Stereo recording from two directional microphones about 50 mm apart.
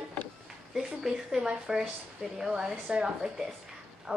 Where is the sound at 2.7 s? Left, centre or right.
Centre.